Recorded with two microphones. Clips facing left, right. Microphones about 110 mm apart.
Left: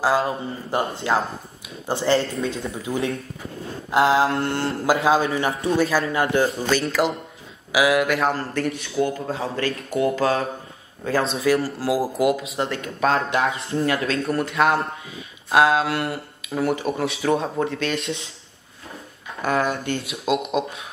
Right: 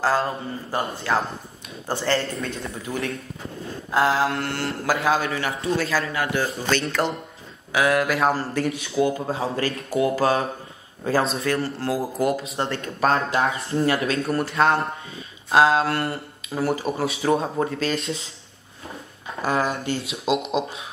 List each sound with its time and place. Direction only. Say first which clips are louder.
0.3 s mantra: left 2 dB; 20° left (ahead or behind)
1.9 s speech: left 3 dB; 20° left (ahead or behind)
2.6 s mantra: left 3 dB; 25° left (ahead or behind)
6.7 s speech: left 2 dB; 5° left (ahead or behind)
11.4 s speech: left 4 dB; 10° left (ahead or behind)
19.4 s speech: left 1 dB; centre (ahead or behind)